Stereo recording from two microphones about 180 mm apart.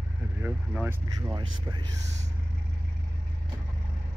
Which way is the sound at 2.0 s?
40° right (ahead or behind).